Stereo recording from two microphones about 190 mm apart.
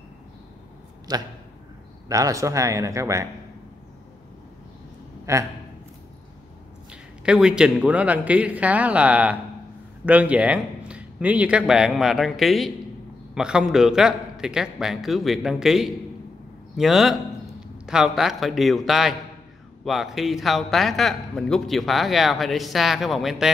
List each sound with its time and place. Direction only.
1.1 s a man's voice: 20° right (ahead or behind)
5.3 s a man's voice: 15° right (ahead or behind)
6.9 s a man's voice: 5° right (ahead or behind)